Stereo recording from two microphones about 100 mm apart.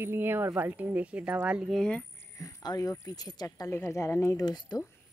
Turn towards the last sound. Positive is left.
turn(degrees=45)  # may be behind; listen again after turning